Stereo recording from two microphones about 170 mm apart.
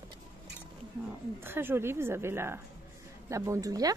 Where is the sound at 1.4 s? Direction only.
10° right (ahead or behind).